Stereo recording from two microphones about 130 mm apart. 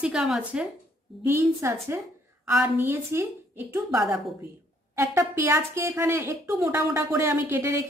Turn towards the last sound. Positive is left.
turn(degrees=-20)  # may be behind; listen again after turning